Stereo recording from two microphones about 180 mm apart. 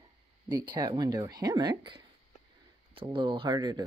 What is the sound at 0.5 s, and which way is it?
Speech, 25° right (ahead or behind).